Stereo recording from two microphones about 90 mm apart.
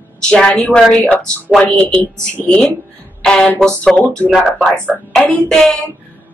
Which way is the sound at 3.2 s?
10° left (ahead or behind).